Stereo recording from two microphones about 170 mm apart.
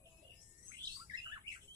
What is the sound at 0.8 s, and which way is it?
Bird, 25° right (ahead or behind).